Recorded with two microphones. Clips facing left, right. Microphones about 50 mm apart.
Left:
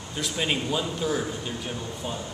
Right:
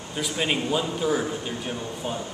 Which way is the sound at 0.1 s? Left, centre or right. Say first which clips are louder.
Right 2 dB; centre.